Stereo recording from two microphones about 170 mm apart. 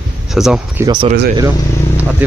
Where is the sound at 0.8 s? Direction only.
25° right (ahead or behind).